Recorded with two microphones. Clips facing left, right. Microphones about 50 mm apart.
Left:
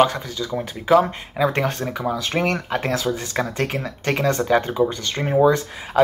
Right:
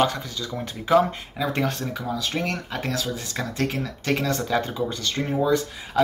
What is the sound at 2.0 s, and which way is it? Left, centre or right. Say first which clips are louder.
Speech: left 6 dB; left.